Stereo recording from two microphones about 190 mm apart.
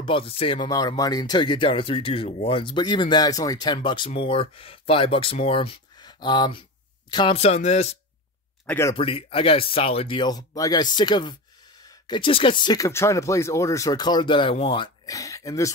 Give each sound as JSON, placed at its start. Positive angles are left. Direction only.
{"t": 0.0, "sound": "speech", "side_deg": 30}
{"t": 8.6, "sound": "speech", "side_deg": 15}
{"t": 8.9, "sound": "speech", "side_deg": 30}
{"t": 15.0, "sound": "speech", "side_deg": 15}